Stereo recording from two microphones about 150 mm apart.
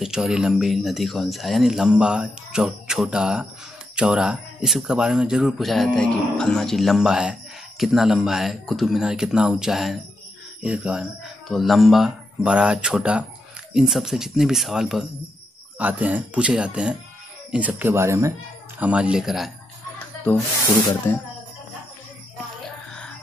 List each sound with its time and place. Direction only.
0.0 s speech: 5° right (ahead or behind)
18.8 s speech: 10° right (ahead or behind)
22.6 s music: 5° left (ahead or behind)